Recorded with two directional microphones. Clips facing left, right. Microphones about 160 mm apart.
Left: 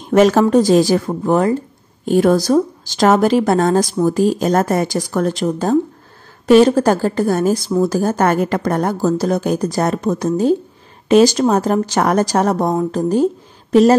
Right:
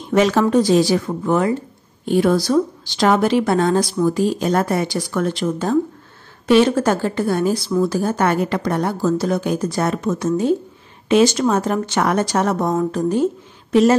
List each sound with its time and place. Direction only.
0.1 s speech: 45° left (ahead or behind)